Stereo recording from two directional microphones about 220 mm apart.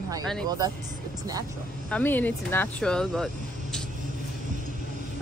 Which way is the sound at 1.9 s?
5° left (ahead or behind).